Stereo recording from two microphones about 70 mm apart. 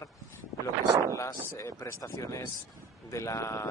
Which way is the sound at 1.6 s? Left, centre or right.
Left.